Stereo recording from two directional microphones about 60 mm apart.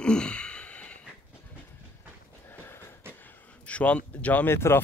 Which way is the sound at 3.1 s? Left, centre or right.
Left.